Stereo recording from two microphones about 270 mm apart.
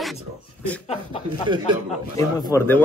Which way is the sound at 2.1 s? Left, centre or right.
Centre.